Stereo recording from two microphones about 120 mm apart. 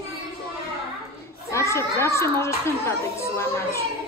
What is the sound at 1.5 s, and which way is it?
Children playing, 25° left (ahead or behind).